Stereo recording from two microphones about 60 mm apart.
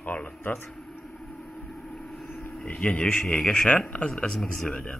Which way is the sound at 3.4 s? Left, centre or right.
Centre.